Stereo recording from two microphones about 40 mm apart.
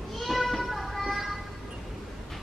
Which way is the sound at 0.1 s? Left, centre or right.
Centre.